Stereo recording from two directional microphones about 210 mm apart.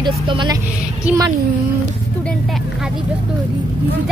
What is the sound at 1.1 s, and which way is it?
Speech, 5° right (ahead or behind).